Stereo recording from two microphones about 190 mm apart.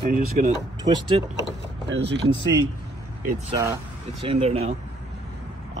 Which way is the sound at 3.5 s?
15° right (ahead or behind).